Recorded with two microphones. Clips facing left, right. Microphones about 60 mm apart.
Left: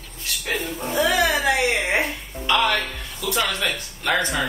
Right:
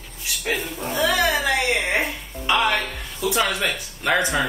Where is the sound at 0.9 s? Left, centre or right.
Centre.